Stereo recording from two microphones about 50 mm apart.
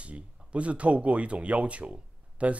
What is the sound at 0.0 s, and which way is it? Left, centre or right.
Speech, right.